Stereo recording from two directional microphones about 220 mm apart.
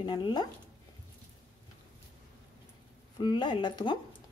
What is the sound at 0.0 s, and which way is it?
Speech, 20° left (ahead or behind).